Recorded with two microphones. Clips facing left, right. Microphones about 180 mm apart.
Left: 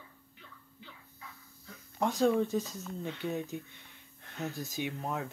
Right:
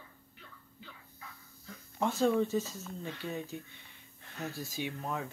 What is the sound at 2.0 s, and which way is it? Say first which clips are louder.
Speech: left 1 dB; 15° left (ahead or behind).